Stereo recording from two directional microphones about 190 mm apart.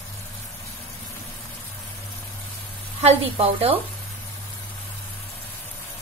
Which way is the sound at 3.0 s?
30° right (ahead or behind).